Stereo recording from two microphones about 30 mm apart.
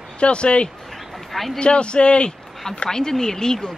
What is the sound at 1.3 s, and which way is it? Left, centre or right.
Speech, centre.